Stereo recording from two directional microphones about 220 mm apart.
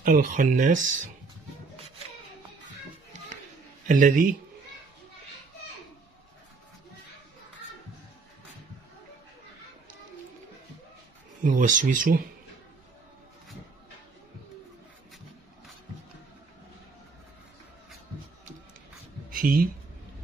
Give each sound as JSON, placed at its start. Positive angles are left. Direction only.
{"t": 0.0, "sound": "speech", "side_deg": -35}
{"t": 3.8, "sound": "speech", "side_deg": -35}
{"t": 11.4, "sound": "speech", "side_deg": -35}
{"t": 19.3, "sound": "speech", "side_deg": -40}